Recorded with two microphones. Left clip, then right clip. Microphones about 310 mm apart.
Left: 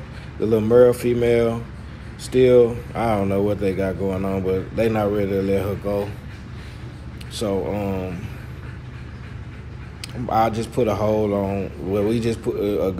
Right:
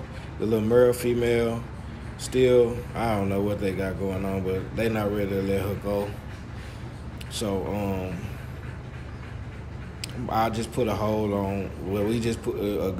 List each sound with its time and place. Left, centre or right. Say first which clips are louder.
0.4 s speech: left 6 dB; centre
7.3 s speech: left 5 dB; centre
10.0 s speech: left 6 dB; centre